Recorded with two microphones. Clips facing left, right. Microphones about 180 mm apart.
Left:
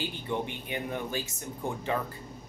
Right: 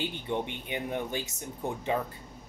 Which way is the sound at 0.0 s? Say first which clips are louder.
Right 1 dB; 20° right (ahead or behind).